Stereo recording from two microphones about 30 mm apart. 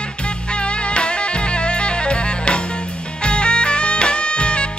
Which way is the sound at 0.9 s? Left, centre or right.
Left.